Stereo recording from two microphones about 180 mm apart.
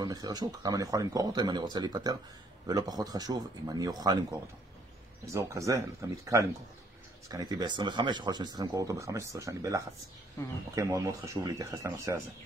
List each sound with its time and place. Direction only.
0.0 s speech: 20° right (ahead or behind)